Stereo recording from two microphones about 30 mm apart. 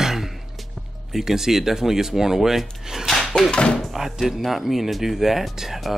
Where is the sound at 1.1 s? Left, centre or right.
Centre.